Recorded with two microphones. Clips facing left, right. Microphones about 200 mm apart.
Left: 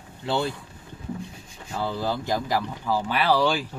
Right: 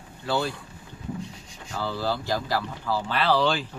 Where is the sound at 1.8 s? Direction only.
20° left (ahead or behind).